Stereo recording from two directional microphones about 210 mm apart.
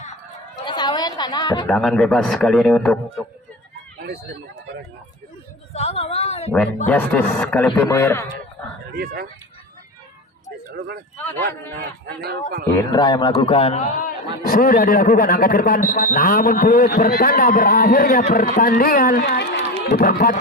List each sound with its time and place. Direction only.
0.7 s a woman's voice: 20° left (ahead or behind)
1.7 s speech: centre (ahead or behind)
4.0 s speech: 50° right (ahead or behind)
5.7 s a man's voice: 30° left (ahead or behind)
6.9 s a man's voice: 10° left (ahead or behind)
8.9 s a man's voice: 50° right (ahead or behind)
11.7 s a man's voice: 50° right (ahead or behind)
12.7 s a man's voice: 15° left (ahead or behind); by 20.3 s 45° left (ahead or behind)